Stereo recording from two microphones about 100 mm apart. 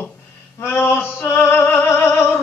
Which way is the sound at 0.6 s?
20° left (ahead or behind).